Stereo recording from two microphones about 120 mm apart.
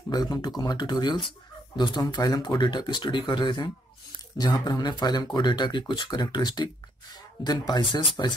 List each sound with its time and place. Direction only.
0.1 s speech: 30° left (ahead or behind)